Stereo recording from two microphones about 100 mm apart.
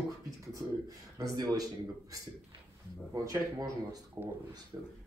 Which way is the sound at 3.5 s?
40° right (ahead or behind).